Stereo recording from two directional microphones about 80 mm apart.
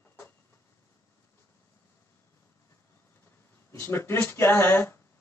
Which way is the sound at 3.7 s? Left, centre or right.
Left.